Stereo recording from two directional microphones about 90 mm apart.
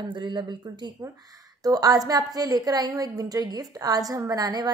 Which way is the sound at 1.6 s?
40° right (ahead or behind).